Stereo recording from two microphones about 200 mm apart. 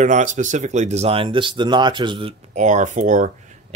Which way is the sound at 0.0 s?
40° right (ahead or behind).